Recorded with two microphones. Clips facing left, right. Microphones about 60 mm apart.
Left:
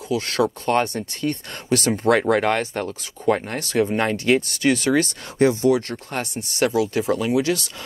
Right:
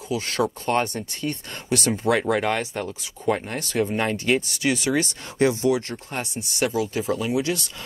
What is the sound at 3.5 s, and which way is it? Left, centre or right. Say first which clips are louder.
Speech: left 3 dB; left.